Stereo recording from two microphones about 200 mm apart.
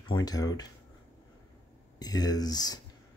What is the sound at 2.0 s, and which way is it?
Speech, 20° left (ahead or behind).